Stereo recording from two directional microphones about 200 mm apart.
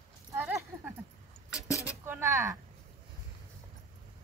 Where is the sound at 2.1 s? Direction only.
15° right (ahead or behind).